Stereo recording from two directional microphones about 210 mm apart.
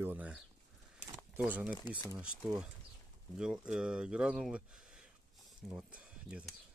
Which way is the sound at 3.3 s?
5° right (ahead or behind).